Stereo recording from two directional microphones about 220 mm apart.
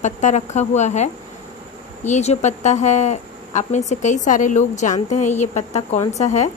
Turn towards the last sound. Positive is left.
turn(degrees=30)  # may be behind; listen again after turning